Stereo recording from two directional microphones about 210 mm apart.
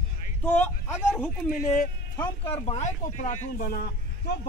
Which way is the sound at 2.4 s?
25° left (ahead or behind).